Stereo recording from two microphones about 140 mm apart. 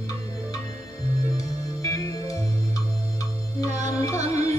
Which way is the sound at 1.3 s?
25° left (ahead or behind).